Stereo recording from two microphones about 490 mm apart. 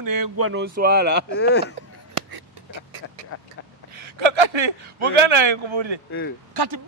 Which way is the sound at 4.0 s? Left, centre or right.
Right.